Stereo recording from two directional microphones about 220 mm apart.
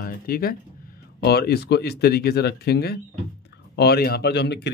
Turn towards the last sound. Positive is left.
turn(degrees=50)  # may be behind; listen again after turning